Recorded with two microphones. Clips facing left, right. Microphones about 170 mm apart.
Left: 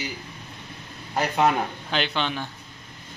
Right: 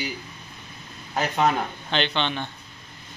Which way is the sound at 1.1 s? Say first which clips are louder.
Left 1 dB; 5° left (ahead or behind).